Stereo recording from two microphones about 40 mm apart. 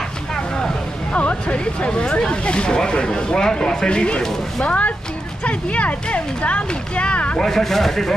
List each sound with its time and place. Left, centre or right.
1.1 s speech: left
4.6 s speech: left
7.3 s speech: centre